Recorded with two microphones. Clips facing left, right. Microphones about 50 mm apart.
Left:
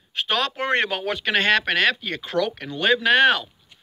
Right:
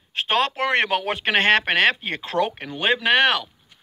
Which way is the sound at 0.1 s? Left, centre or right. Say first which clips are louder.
Right 3 dB; right.